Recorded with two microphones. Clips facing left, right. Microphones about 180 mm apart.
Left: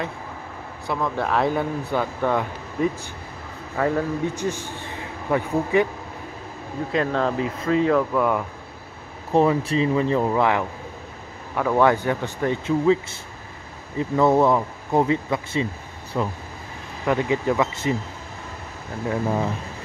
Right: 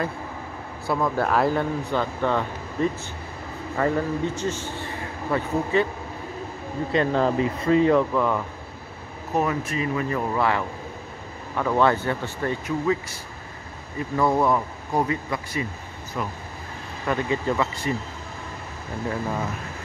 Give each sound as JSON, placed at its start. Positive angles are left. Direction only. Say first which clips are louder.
{"t": 0.8, "sound": "speech", "louder": "right 1 dB", "side_deg": -5}
{"t": 4.4, "sound": "a man's voice", "louder": "left 1 dB", "side_deg": 15}
{"t": 6.9, "sound": "speech", "louder": "right 1 dB", "side_deg": 0}
{"t": 9.3, "sound": "speech", "louder": "left 6 dB", "side_deg": 30}
{"t": 17.0, "sound": "speech", "louder": "left 3 dB", "side_deg": 15}